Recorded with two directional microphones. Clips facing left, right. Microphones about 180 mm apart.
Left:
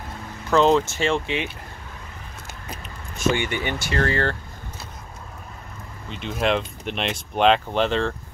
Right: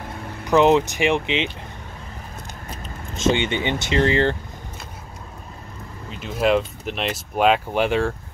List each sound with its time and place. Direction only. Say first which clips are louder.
0.5 s speech: right 2 dB; 15° right (ahead or behind)
3.2 s speech: right 3 dB; 20° right (ahead or behind)
6.0 s speech: right 3 dB; 5° right (ahead or behind)